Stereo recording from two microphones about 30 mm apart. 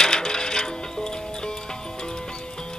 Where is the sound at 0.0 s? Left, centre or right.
Left.